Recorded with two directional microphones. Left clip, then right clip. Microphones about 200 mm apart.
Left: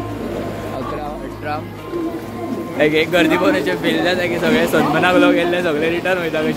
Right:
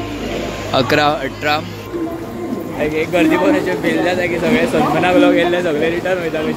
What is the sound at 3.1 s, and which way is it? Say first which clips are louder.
A man's voice: right 1 dB; 10° left (ahead or behind).